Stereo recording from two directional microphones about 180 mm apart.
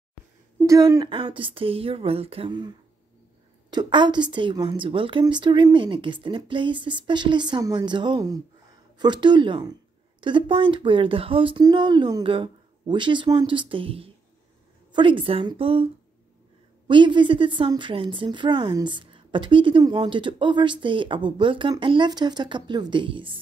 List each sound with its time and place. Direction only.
0.6 s a woman's voice: 20° right (ahead or behind)
3.7 s a woman's voice: 25° right (ahead or behind)